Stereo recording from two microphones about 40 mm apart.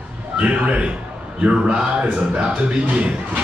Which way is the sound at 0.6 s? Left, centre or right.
Right.